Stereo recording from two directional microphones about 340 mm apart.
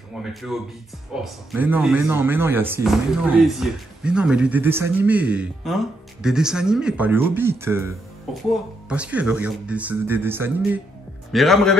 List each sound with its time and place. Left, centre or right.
0.2 s speech: centre